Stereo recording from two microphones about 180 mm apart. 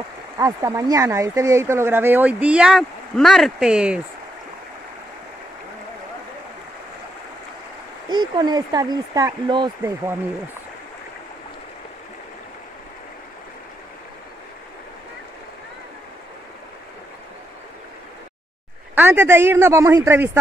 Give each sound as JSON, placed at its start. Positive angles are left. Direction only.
{"t": 0.4, "sound": "speech", "side_deg": -20}
{"t": 8.1, "sound": "speech", "side_deg": -25}
{"t": 18.9, "sound": "speech", "side_deg": -10}